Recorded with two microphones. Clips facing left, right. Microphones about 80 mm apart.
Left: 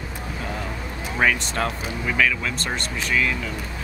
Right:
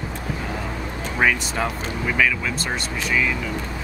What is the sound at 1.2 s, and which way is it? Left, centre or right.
Speech, centre.